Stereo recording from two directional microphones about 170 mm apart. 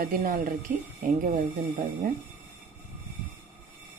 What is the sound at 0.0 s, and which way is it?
Speech, 60° right (ahead or behind).